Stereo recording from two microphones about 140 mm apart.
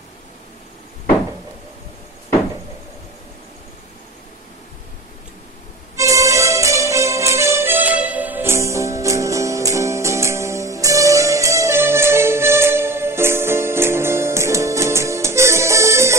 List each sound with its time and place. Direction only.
5.9 s music: 20° right (ahead or behind)